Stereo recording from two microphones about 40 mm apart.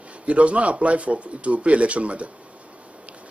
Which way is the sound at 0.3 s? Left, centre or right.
Right.